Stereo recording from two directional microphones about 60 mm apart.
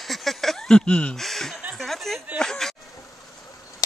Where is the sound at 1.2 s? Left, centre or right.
Centre.